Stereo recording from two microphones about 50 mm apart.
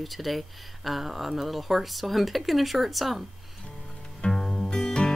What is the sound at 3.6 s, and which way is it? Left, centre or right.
Music, centre.